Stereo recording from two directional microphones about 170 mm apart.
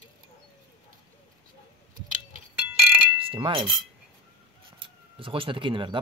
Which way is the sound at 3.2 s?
30° right (ahead or behind).